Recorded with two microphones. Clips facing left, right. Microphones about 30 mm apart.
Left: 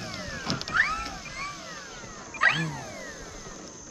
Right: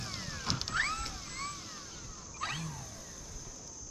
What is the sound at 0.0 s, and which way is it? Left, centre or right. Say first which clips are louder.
Vehicle: left 5 dB; centre.